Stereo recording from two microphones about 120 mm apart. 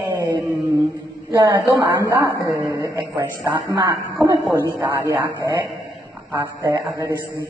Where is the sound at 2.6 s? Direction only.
25° right (ahead or behind).